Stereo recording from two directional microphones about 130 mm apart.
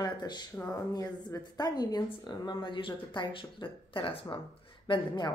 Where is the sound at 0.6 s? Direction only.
20° left (ahead or behind).